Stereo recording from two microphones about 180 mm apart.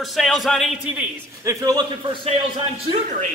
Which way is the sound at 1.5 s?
20° right (ahead or behind).